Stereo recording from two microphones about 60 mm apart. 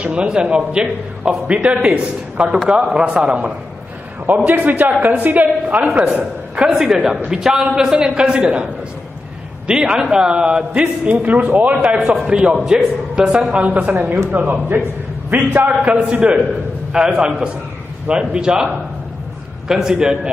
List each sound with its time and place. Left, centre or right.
0.0 s a man's voice: centre
4.5 s a man's voice: right
6.7 s a man's voice: centre
9.7 s a man's voice: centre
12.0 s a man's voice: centre
13.5 s a man's voice: right
15.8 s a man's voice: right
16.9 s a man's voice: centre
19.7 s a man's voice: centre